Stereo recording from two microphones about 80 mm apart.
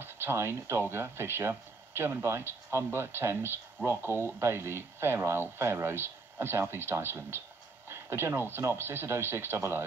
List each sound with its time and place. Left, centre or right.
0.0 s speech: right